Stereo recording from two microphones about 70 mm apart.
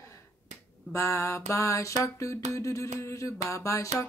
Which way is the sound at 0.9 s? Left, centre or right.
Left.